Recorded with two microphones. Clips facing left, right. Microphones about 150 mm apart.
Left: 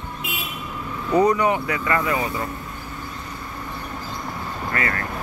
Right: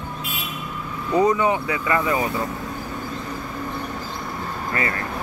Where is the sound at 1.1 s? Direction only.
20° right (ahead or behind).